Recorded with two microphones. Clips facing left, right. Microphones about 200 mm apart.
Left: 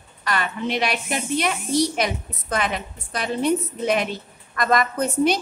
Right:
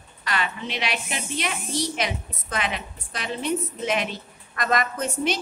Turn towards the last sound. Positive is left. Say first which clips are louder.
# left 6 dB
turn(degrees=35)  # may be behind; listen again after turning